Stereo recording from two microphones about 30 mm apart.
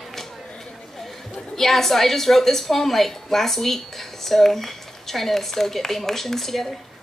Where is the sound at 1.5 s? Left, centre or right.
Centre.